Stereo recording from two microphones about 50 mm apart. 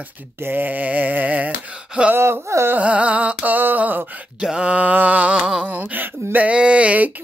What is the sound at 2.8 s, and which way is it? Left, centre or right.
Music, right.